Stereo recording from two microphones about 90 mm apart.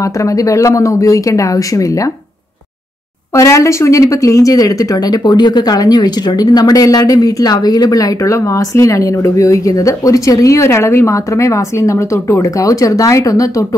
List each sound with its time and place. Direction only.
0.0 s speech: 40° left (ahead or behind)
3.3 s speech: 35° left (ahead or behind)